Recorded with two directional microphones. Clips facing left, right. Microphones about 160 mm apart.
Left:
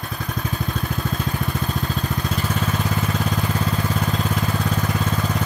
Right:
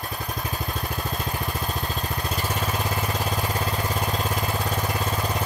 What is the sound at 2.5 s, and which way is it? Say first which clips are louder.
Lawn mower: left 3 dB; 10° right (ahead or behind).